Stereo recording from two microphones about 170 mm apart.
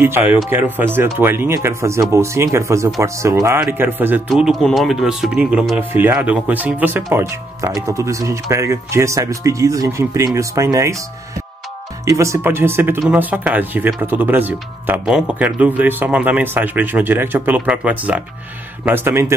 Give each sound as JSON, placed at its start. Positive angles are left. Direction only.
{"t": 0.0, "sound": "a man's voice", "side_deg": -15}
{"t": 12.0, "sound": "a man's voice", "side_deg": -20}